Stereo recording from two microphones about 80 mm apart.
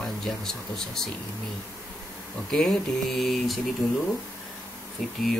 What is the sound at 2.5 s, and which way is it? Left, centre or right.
Speech, centre.